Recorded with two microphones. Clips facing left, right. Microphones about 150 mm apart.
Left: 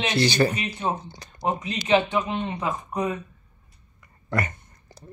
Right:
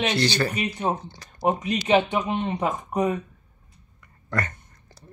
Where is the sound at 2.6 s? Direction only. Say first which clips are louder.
Right 3 dB; 45° right (ahead or behind).